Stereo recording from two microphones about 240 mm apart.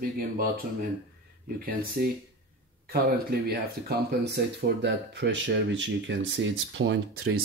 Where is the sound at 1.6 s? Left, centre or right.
Right.